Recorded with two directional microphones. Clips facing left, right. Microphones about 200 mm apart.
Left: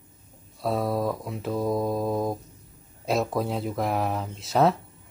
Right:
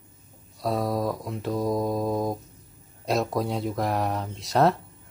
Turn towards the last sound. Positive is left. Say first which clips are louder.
# even
turn(degrees=0)  # may be behind; listen again after turning